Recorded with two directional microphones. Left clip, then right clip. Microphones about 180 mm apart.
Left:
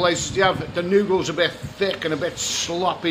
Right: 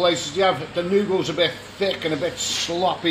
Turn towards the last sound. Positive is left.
turn(degrees=-5)  # may be behind; listen again after turning